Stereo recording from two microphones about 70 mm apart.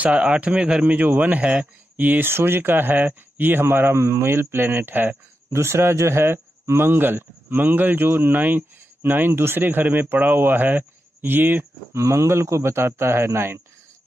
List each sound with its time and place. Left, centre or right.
0.0 s speech: centre
12.0 s speech: right